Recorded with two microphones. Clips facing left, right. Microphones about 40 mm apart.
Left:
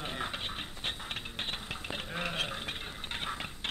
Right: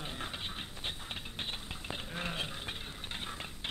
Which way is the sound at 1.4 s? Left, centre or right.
Left.